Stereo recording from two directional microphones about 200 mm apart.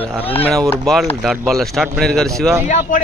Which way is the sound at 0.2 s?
30° left (ahead or behind).